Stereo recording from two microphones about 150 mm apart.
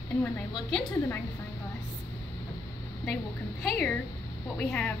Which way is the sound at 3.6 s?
Centre (ahead or behind).